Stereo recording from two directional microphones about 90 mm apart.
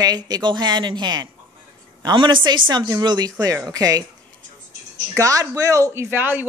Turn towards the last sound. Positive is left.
turn(degrees=-20)  # may be behind; listen again after turning